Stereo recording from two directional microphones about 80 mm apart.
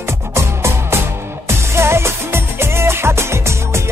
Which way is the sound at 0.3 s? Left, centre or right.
Right.